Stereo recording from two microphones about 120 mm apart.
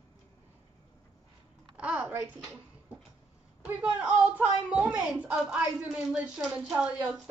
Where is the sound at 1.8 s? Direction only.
10° right (ahead or behind).